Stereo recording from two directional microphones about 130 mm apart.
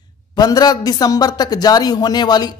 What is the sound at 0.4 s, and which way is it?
A man's voice, 30° left (ahead or behind).